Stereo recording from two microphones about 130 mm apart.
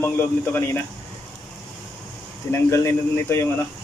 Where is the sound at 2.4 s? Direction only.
20° left (ahead or behind).